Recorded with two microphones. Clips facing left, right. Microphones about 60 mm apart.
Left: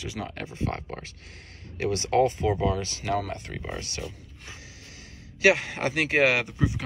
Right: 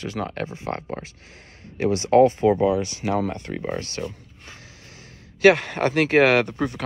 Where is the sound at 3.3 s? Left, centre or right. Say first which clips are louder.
Right 7 dB; right.